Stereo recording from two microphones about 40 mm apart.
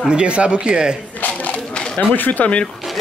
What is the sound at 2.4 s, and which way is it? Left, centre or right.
Speech, left.